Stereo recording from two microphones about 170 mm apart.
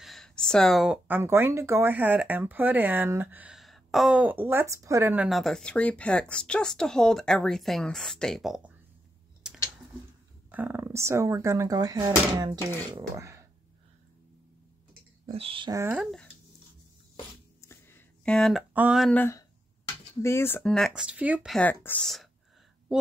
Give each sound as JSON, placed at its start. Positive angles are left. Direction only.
{"t": 0.0, "sound": "speech", "side_deg": 0}
{"t": 10.5, "sound": "speech", "side_deg": -10}
{"t": 15.2, "sound": "speech", "side_deg": -35}
{"t": 15.7, "sound": "speech", "side_deg": -10}
{"t": 17.6, "sound": "a sound", "side_deg": 15}
{"t": 18.7, "sound": "speech", "side_deg": -10}
{"t": 19.0, "sound": "speech", "side_deg": 10}
{"t": 21.5, "sound": "speech", "side_deg": 10}